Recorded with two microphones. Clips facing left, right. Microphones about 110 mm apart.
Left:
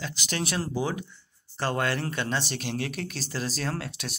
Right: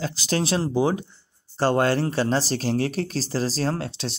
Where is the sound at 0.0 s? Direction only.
35° right (ahead or behind).